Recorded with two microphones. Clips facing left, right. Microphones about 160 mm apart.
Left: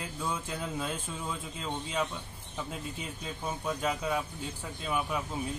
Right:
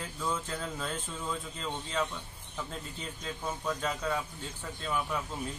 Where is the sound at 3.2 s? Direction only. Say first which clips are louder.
Even; 10° left (ahead or behind).